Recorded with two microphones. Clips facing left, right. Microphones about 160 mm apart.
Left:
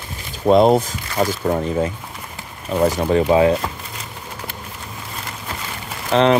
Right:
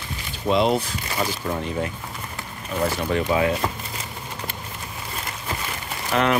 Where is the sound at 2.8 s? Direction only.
40° left (ahead or behind).